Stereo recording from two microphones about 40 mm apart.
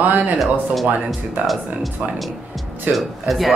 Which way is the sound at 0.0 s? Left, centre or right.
Right.